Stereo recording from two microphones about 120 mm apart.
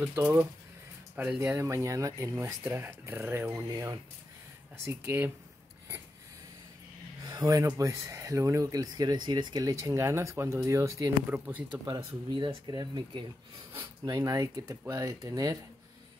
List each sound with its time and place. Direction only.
0.0 s speech: 15° right (ahead or behind); by 2.3 s 30° right (ahead or behind)
2.6 s speech: 20° right (ahead or behind)
3.6 s speech: 30° right (ahead or behind)
4.8 s speech: 20° right (ahead or behind)
7.2 s speech: 30° right (ahead or behind)
11.2 s speech: 15° right (ahead or behind)
11.8 s speech: 25° right (ahead or behind)
12.4 s speech: 40° right (ahead or behind)